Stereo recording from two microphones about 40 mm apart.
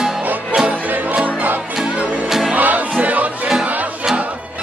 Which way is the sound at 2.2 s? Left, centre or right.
Centre.